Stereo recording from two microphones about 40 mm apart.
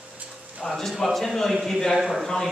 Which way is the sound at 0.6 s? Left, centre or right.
Centre.